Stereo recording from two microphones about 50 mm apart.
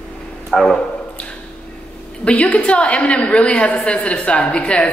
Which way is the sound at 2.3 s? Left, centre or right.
Left.